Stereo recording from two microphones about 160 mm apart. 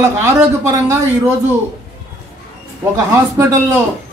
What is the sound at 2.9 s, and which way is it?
Speech, 20° right (ahead or behind).